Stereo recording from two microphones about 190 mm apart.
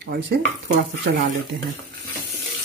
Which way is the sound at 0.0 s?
60° right (ahead or behind).